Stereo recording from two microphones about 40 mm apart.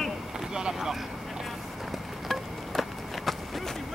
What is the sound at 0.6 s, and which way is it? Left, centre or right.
Boat, centre.